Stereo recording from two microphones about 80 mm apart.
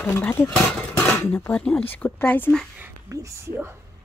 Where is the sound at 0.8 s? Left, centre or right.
Centre.